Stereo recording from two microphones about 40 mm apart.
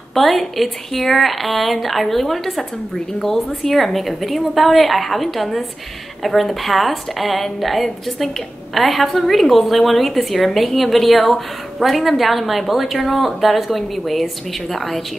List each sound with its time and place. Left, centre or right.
0.1 s a woman's voice: centre